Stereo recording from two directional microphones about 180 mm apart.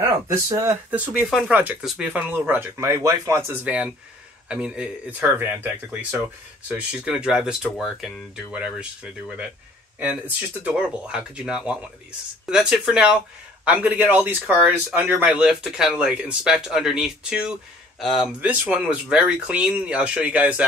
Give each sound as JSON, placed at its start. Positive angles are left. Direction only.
{"t": 0.0, "sound": "speech", "side_deg": -15}